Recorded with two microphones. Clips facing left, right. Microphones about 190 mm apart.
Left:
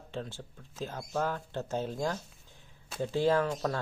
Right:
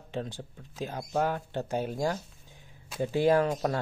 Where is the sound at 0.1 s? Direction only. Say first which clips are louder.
Right 4 dB; 15° right (ahead or behind).